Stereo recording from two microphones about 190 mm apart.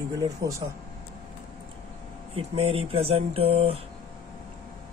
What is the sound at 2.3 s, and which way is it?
Speech, 30° right (ahead or behind).